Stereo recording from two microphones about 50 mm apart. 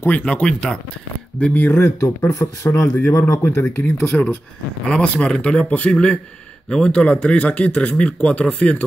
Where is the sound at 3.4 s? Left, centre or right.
Left.